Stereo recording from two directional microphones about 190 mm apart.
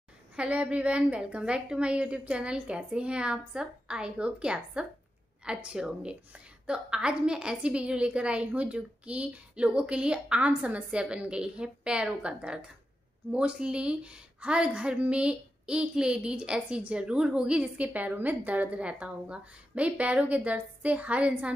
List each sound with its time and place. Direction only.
0.4 s a woman's voice: 5° right (ahead or behind)